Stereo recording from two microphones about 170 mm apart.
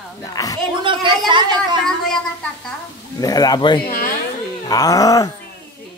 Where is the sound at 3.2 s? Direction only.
20° left (ahead or behind).